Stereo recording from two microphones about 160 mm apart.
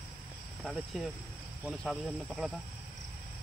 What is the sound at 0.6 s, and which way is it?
Speech, centre (ahead or behind).